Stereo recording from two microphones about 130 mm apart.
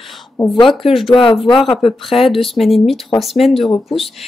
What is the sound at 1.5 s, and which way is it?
Speech, centre (ahead or behind).